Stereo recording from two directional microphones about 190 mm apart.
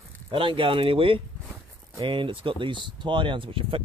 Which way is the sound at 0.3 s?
25° right (ahead or behind).